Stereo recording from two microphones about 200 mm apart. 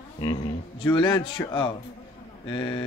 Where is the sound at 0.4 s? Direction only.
25° left (ahead or behind).